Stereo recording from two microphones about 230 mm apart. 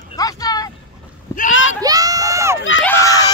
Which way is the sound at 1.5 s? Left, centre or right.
Left.